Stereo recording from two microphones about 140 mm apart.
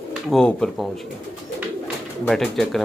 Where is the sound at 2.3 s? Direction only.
Centre (ahead or behind).